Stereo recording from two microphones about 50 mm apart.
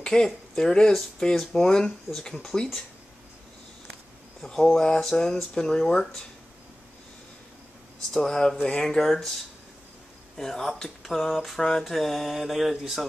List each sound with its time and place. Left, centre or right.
0.0 s speech: centre
2.1 s speech: left
2.5 s speech: centre
4.5 s speech: centre
8.1 s speech: centre
11.8 s mantra: centre